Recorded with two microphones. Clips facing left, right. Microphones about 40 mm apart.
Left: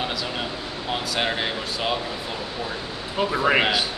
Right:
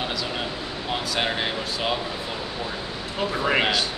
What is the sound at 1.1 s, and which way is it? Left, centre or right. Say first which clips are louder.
Speech: even; centre.